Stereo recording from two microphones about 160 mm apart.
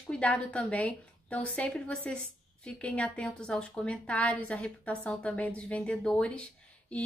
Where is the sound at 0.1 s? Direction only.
10° left (ahead or behind).